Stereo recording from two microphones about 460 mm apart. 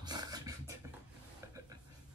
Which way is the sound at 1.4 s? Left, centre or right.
Centre.